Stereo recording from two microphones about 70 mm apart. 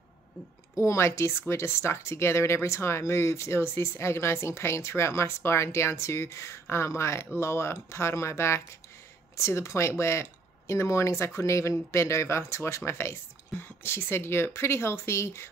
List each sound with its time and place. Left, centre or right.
0.7 s speech: left